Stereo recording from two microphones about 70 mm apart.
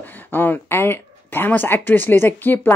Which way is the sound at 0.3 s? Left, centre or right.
Left.